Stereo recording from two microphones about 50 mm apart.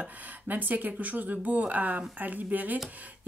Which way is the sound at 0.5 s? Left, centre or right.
Right.